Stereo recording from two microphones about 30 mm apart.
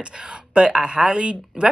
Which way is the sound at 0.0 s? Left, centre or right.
Right.